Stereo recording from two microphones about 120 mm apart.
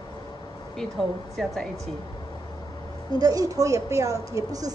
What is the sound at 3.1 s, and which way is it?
Speech, 30° right (ahead or behind).